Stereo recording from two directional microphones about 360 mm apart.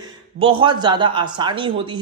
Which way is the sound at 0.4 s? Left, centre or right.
Centre.